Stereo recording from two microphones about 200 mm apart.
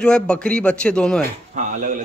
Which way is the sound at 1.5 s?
40° right (ahead or behind).